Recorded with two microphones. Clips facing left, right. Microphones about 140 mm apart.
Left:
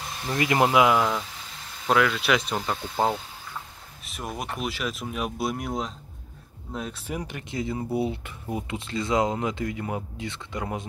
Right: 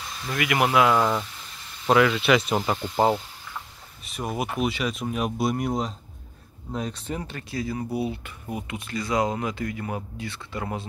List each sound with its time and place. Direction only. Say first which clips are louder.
0.2 s speech: left 1 dB; 30° left (ahead or behind)
0.9 s speech: right 2 dB; centre (ahead or behind); by 10.9 s 15° left (ahead or behind)